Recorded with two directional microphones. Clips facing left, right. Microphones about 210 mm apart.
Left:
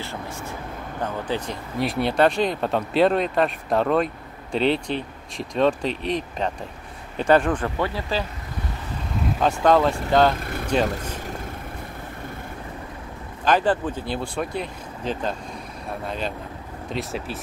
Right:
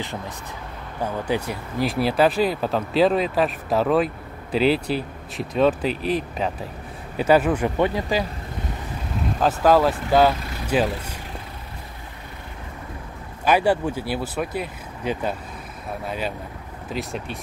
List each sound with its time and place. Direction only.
1.2 s speech: 10° right (ahead or behind)
9.4 s speech: 5° right (ahead or behind)
10.4 s vehicle: 55° left (ahead or behind)
10.7 s speech: 5° right (ahead or behind)
13.5 s speech: 10° right (ahead or behind)